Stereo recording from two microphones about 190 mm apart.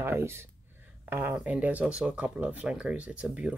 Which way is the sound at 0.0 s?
15° right (ahead or behind).